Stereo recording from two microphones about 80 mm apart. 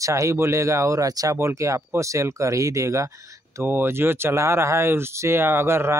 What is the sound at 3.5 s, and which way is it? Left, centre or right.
Speech, right.